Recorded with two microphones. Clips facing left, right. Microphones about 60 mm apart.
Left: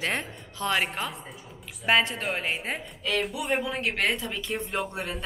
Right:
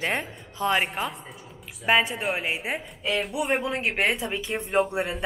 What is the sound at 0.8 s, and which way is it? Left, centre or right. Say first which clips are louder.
A woman's voice: right 2 dB; centre.